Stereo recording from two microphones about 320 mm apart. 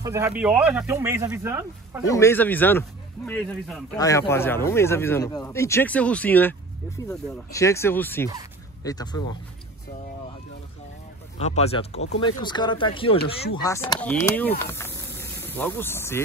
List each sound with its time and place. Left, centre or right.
0.0 s speech: centre
2.0 s speech: centre
11.3 s speech: centre